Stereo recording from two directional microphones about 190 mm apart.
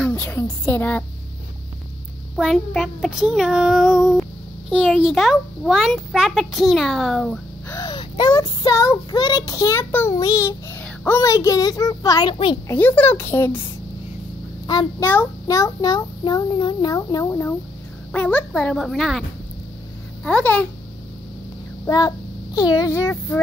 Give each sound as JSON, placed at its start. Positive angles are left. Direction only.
{"t": 0.0, "sound": "speech", "side_deg": 10}
{"t": 2.3, "sound": "child singing", "side_deg": 0}
{"t": 7.7, "sound": "a child's voice", "side_deg": 20}
{"t": 12.6, "sound": "a child's voice", "side_deg": 10}
{"t": 14.7, "sound": "a child's voice", "side_deg": 20}
{"t": 18.1, "sound": "child singing", "side_deg": 5}
{"t": 20.2, "sound": "a child's voice", "side_deg": 5}
{"t": 21.8, "sound": "a child's voice", "side_deg": 20}